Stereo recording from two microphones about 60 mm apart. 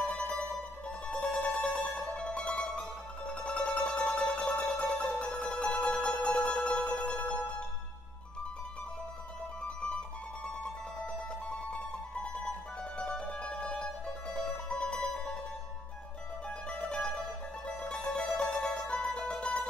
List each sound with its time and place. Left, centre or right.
0.1 s mandolin: centre
3.3 s music: centre
9.6 s music: centre
16.4 s music: centre